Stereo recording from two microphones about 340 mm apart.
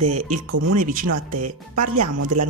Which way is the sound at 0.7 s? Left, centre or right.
Right.